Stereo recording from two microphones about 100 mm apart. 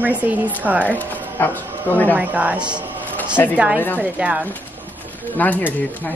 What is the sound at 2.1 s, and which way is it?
A woman's voice, 15° right (ahead or behind).